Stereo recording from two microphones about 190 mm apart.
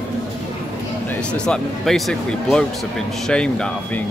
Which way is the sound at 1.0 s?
5° left (ahead or behind).